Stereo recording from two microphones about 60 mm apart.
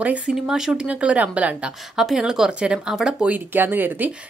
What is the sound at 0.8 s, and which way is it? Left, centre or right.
Speech, right.